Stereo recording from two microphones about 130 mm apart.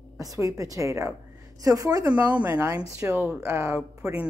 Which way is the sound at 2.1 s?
10° right (ahead or behind).